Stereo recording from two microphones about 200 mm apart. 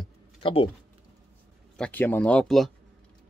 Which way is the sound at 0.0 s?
25° left (ahead or behind).